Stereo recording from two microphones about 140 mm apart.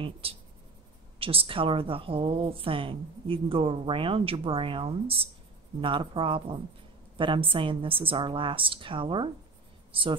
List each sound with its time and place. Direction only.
0.0 s a woman's voice: 40° right (ahead or behind)